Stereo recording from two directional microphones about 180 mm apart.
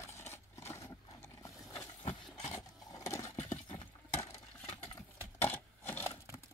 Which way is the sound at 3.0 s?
20° left (ahead or behind).